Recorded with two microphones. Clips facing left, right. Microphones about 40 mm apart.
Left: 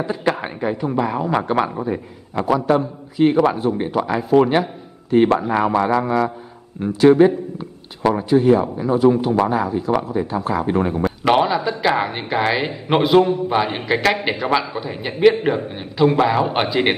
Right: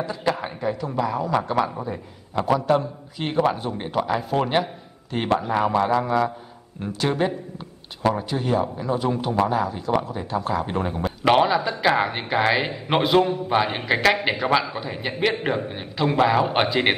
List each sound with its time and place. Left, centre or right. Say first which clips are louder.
0.0 s a man's voice: left 4 dB; left
1.8 s a man's voice: left 7 dB; left; by 5.3 s centre
5.7 s a man's voice: left 2 dB; left
5.9 s a sound: left 3 dB; centre
6.8 s a man's voice: left 11 dB; centre
8.0 s speech: left 7 dB; centre